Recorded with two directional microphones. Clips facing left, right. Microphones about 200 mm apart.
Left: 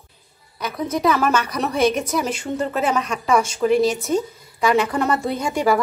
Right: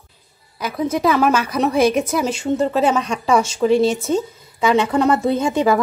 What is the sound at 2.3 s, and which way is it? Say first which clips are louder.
Speech: right 5 dB; 25° right (ahead or behind).